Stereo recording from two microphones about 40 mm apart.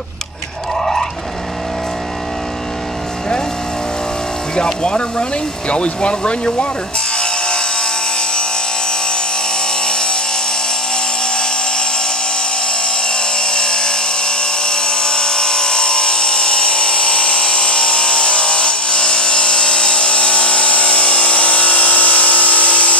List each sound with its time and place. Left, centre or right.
4.6 s speech: left
7.2 s wood: centre
9.8 s wood: centre
13.1 s a sound: centre; by 22.9 s left